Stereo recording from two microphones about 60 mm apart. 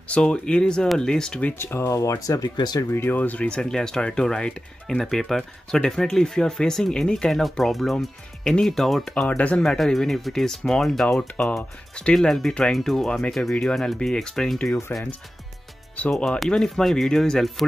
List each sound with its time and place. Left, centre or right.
0.1 s speech: centre
1.6 s speech: left
2.9 s speech: left
3.2 s speech: left
3.4 s speech: centre
12.2 s speech: centre
16.4 s speech: centre